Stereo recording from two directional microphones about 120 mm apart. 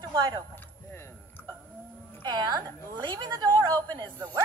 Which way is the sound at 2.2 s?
35° right (ahead or behind).